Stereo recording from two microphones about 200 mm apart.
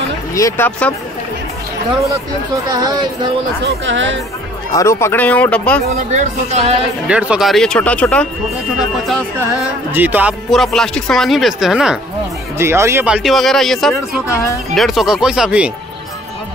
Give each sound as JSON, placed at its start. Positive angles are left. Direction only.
{"t": 0.3, "sound": "speech", "side_deg": 15}
{"t": 2.7, "sound": "speech", "side_deg": -20}
{"t": 3.6, "sound": "speech", "side_deg": -70}
{"t": 4.7, "sound": "speech", "side_deg": 15}
{"t": 5.9, "sound": "a woman's voice", "side_deg": -35}
{"t": 7.1, "sound": "speech", "side_deg": -5}
{"t": 14.2, "sound": "speech", "side_deg": 15}
{"t": 14.8, "sound": "speech", "side_deg": 0}